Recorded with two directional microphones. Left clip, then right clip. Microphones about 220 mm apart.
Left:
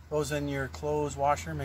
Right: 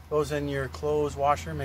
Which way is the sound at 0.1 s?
20° left (ahead or behind).